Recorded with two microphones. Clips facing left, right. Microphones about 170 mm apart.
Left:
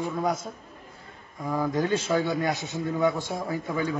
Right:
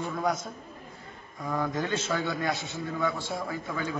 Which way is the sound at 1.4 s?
10° left (ahead or behind).